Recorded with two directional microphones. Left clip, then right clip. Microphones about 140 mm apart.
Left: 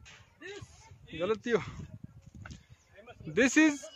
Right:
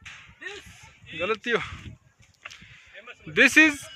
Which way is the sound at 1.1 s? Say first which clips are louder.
Right 5 dB; 20° left (ahead or behind).